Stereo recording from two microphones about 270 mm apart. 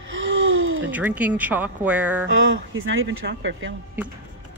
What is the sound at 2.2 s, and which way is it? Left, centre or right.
Speech, right.